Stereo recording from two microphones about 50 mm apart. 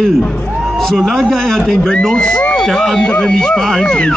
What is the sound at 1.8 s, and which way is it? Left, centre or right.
Speech, centre.